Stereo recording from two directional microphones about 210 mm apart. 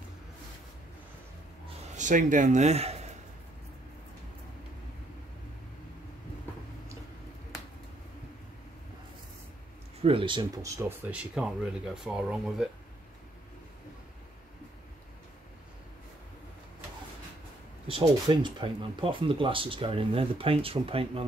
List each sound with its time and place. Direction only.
2.0 s speech: 35° right (ahead or behind)
10.0 s speech: 25° right (ahead or behind); by 12.6 s centre (ahead or behind)
17.8 s speech: 25° right (ahead or behind)